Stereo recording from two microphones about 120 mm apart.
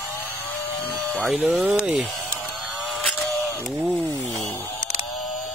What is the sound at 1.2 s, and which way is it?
Speech, centre (ahead or behind).